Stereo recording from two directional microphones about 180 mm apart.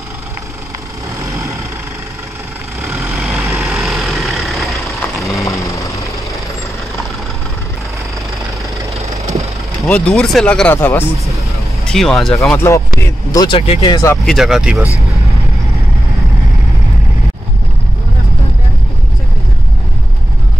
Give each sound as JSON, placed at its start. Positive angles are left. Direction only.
{"t": 1.2, "sound": "vehicle", "side_deg": -15}
{"t": 3.2, "sound": "vehicle", "side_deg": 0}
{"t": 5.4, "sound": "vehicle", "side_deg": 15}
{"t": 9.8, "sound": "speech", "side_deg": 5}
{"t": 12.4, "sound": "speech", "side_deg": 15}
{"t": 13.6, "sound": "speech", "side_deg": 35}
{"t": 13.9, "sound": "speech", "side_deg": 15}
{"t": 14.2, "sound": "speech", "side_deg": 0}